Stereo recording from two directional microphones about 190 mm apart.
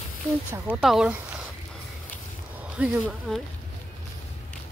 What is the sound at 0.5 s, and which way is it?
Speech, 5° right (ahead or behind).